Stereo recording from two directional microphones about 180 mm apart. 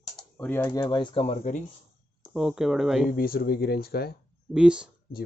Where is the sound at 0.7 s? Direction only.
25° left (ahead or behind); by 1.6 s 40° left (ahead or behind).